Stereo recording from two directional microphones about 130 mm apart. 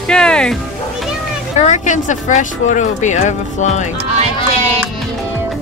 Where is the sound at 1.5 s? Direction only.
65° left (ahead or behind).